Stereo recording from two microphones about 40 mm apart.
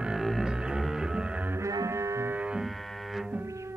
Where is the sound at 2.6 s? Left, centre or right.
Centre.